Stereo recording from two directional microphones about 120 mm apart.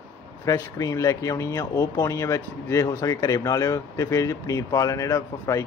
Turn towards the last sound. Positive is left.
turn(degrees=25)  # may be behind; listen again after turning